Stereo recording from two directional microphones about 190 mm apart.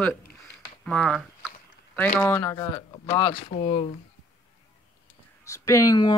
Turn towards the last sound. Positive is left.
turn(degrees=20)  # may be behind; listen again after turning